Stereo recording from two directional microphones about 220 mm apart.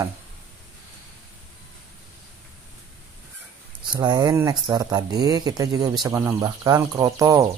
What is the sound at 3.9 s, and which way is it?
Speech, 20° right (ahead or behind).